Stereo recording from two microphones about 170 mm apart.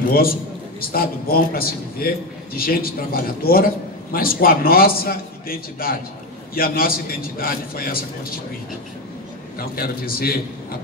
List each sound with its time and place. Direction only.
0.7 s a man's voice: 60° left (ahead or behind)
9.8 s a man's voice: 60° left (ahead or behind)